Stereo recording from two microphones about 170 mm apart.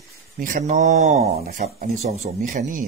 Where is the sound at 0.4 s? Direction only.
45° right (ahead or behind).